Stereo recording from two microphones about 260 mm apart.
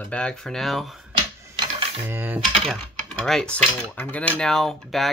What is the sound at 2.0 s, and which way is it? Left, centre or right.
Speech, centre.